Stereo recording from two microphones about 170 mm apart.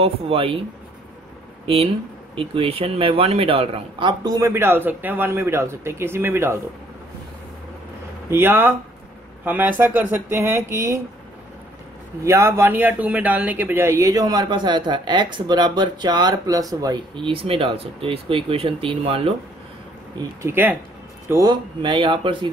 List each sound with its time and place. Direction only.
0.0 s speech: 35° right (ahead or behind)
2.3 s speech: 35° right (ahead or behind); by 6.6 s 15° right (ahead or behind)
8.3 s speech: 15° right (ahead or behind)
12.3 s speech: 15° right (ahead or behind); by 19.3 s 35° right (ahead or behind)
20.4 s speech: 10° right (ahead or behind)
21.5 s speech: 30° right (ahead or behind)